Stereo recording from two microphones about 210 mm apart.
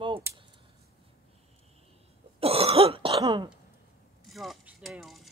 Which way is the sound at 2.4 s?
25° right (ahead or behind).